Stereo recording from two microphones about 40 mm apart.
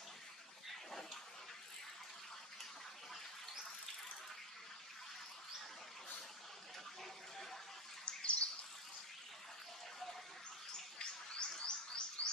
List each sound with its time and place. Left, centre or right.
8.0 s bird: left
11.0 s bird: left
12.2 s a sound: left